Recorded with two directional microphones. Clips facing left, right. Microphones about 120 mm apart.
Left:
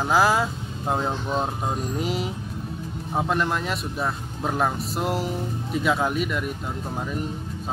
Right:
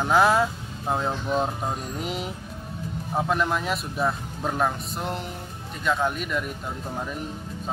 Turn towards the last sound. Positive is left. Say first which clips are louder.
# left 2 dB
turn(degrees=5)  # may be behind; listen again after turning